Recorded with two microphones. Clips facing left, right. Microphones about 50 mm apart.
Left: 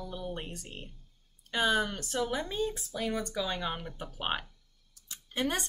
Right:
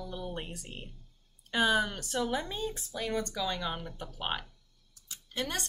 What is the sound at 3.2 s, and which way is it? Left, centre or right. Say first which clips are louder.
Speech: left 1 dB; centre.